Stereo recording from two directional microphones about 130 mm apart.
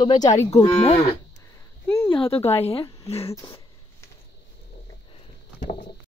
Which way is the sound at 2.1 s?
45° left (ahead or behind).